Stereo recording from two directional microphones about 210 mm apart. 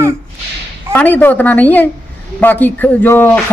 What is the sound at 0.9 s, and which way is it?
A man's voice, 10° left (ahead or behind).